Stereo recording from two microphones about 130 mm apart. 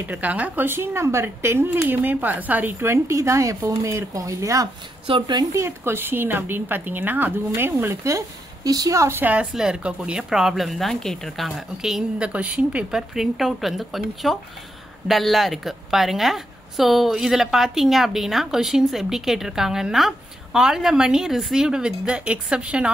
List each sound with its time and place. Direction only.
0.0 s speech: 10° right (ahead or behind)
5.0 s a woman's voice: 40° right (ahead or behind); by 22.8 s 10° right (ahead or behind)